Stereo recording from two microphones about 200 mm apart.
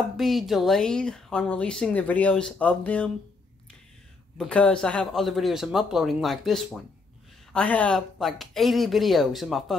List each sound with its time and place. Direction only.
0.2 s a woman's voice: centre (ahead or behind)
4.4 s a woman's voice: 5° left (ahead or behind)